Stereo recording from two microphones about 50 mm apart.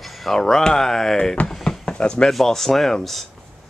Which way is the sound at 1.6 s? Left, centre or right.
Centre.